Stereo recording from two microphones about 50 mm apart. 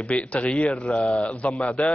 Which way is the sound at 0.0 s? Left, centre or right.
Left.